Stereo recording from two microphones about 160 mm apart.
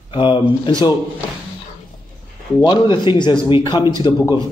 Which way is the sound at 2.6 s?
30° left (ahead or behind).